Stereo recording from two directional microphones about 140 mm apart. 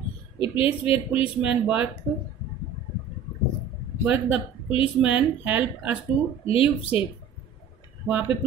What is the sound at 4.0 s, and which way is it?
A woman's voice, 10° right (ahead or behind).